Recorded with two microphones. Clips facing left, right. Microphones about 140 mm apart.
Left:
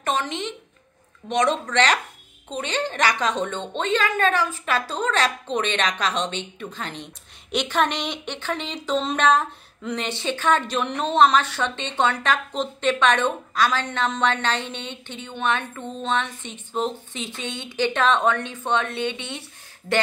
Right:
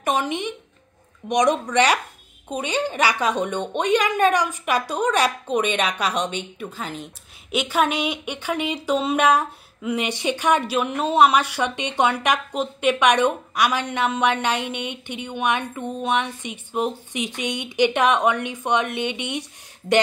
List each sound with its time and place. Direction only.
0.0 s speech: 10° right (ahead or behind)